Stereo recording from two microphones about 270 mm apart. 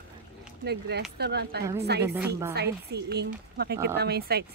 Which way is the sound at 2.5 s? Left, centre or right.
Right.